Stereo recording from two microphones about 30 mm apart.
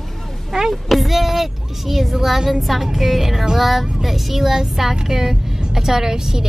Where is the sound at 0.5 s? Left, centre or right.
Centre.